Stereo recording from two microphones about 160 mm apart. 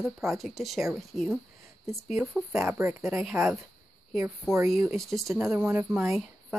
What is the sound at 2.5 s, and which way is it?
Speech, 15° right (ahead or behind).